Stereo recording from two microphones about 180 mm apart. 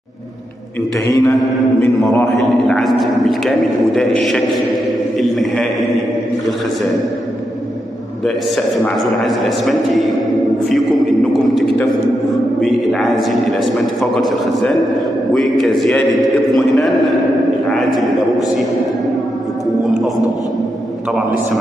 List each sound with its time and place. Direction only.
1.0 s mantra: 20° left (ahead or behind)
2.1 s a man's voice: 5° left (ahead or behind)
8.8 s a man's voice: centre (ahead or behind)
12.5 s a man's voice: centre (ahead or behind)